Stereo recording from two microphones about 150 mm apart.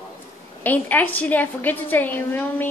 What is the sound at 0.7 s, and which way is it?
A woman's voice, 10° left (ahead or behind).